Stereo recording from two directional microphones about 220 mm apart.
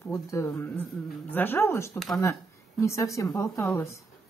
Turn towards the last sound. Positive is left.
turn(degrees=15)  # may be behind; listen again after turning